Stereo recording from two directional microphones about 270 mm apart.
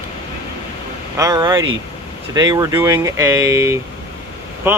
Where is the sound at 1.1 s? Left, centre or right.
Centre.